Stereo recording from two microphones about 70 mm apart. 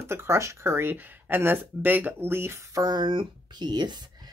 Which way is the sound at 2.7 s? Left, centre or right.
Right.